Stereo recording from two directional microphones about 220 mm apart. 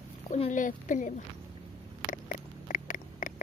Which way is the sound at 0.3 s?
35° left (ahead or behind).